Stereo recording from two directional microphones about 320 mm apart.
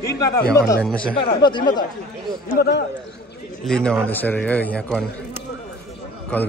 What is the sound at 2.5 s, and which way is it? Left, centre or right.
Speech, left.